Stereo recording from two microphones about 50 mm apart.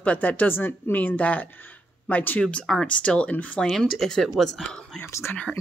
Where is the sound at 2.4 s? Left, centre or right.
Centre.